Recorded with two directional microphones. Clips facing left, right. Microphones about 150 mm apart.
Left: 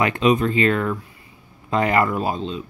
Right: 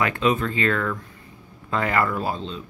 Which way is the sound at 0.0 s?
20° left (ahead or behind).